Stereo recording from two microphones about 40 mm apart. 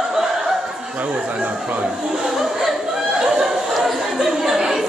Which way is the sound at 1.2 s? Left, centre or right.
Right.